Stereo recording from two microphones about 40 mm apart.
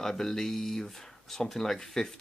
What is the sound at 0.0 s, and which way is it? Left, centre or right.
Speech, centre.